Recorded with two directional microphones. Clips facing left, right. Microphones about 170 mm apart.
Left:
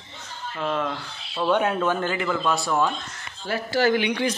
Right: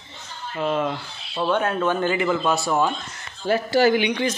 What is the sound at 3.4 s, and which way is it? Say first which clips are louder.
Speech: right 5 dB; 20° right (ahead or behind).